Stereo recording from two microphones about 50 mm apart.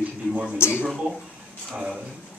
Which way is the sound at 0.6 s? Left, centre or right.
Left.